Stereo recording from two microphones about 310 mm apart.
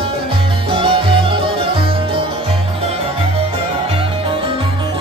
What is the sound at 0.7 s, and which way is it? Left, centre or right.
Music, centre.